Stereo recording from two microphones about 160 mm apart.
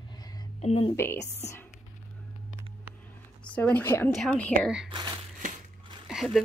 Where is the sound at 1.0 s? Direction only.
15° left (ahead or behind).